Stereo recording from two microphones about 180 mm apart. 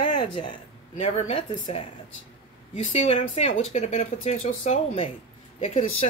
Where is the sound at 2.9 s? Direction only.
35° left (ahead or behind).